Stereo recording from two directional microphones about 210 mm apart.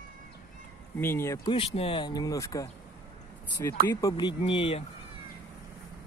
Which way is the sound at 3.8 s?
15° left (ahead or behind).